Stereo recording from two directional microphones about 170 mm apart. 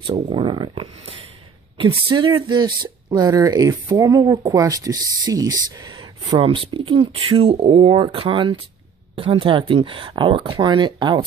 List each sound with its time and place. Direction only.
0.0 s speech: 30° right (ahead or behind)
6.3 s speech: 35° right (ahead or behind)